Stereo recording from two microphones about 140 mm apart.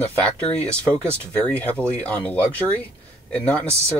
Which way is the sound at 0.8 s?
10° left (ahead or behind).